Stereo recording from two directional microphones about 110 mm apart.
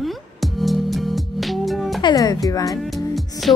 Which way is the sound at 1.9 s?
40° left (ahead or behind).